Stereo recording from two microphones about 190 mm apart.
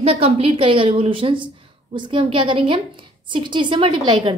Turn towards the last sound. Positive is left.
turn(degrees=-25)  # may be behind; listen again after turning